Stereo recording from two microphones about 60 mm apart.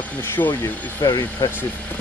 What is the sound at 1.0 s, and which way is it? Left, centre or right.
Speech, left.